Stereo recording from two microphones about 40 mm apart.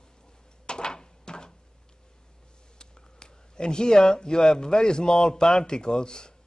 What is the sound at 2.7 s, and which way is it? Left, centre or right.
Speech, centre.